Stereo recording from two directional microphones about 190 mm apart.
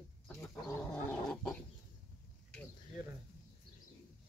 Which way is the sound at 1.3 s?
5° left (ahead or behind).